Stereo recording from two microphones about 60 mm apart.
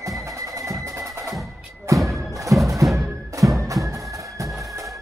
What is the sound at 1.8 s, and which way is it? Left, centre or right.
Thump, right.